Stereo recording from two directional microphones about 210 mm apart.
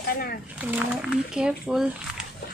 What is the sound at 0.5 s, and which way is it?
Speech, 5° right (ahead or behind).